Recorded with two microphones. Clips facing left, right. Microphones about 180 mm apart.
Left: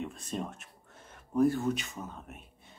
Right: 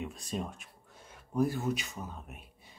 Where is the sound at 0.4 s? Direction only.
Centre (ahead or behind).